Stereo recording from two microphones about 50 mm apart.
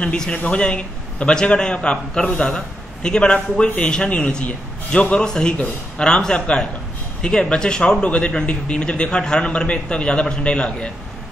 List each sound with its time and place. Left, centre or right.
0.0 s a man's voice: centre